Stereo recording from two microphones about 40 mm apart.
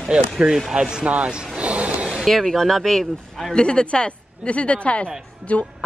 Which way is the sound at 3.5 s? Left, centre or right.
Left.